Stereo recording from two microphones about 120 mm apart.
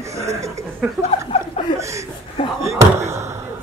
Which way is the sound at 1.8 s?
25° right (ahead or behind).